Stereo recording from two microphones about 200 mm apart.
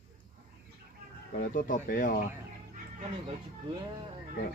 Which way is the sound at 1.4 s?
40° left (ahead or behind).